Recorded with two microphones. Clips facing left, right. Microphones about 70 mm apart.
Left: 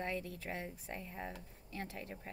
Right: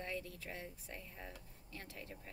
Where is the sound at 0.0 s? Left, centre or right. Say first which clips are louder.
Left 4 dB; left.